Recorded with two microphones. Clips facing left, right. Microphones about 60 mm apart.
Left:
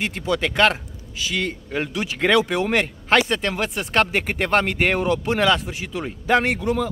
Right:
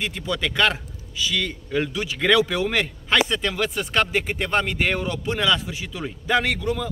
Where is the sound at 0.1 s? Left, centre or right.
Left.